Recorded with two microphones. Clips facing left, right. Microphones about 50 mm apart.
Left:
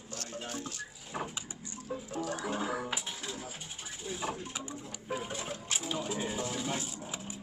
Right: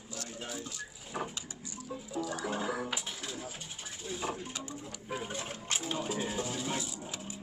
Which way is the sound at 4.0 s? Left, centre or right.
Centre.